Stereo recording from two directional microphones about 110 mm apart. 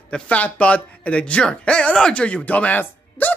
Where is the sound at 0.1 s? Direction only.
10° left (ahead or behind).